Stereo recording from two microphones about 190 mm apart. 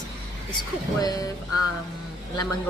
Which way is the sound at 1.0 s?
20° left (ahead or behind).